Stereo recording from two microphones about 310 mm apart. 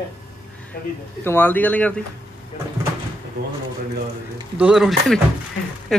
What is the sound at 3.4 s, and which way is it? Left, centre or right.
Speech, right.